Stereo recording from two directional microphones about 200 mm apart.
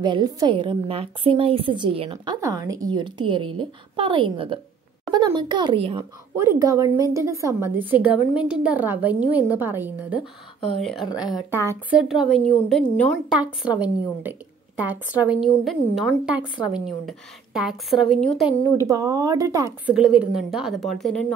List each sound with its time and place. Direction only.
0.0 s a woman's voice: 20° right (ahead or behind)
6.3 s a woman's voice: 15° right (ahead or behind)
18.8 s a woman's voice: 15° right (ahead or behind)
19.9 s a woman's voice: 5° right (ahead or behind)